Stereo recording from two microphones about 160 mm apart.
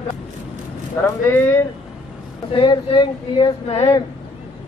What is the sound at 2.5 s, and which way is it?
Speech, 30° left (ahead or behind).